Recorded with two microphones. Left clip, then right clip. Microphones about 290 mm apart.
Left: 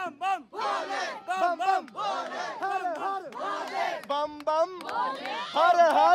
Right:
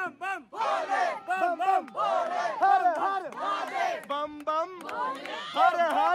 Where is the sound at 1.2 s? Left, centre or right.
Centre.